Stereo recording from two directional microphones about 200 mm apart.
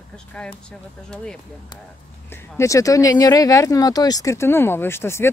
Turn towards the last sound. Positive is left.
turn(degrees=10)  # may be behind; listen again after turning